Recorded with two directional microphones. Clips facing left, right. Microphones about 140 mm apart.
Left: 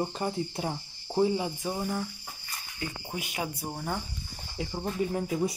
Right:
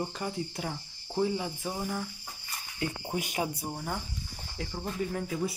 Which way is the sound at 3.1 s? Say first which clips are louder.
Right 2 dB; 45° right (ahead or behind).